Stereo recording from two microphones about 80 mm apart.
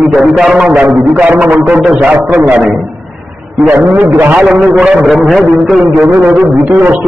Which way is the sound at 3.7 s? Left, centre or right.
Right.